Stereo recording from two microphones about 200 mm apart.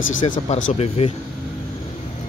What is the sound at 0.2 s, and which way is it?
Speech, 30° left (ahead or behind).